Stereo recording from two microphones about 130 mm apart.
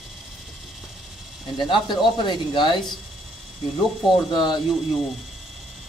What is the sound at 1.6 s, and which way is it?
Speech, 35° left (ahead or behind).